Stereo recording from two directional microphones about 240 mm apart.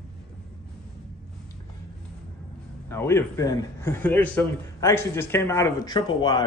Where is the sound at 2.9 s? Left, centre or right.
Centre.